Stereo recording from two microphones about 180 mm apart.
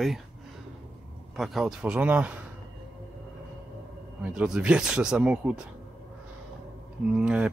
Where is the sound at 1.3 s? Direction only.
Centre (ahead or behind).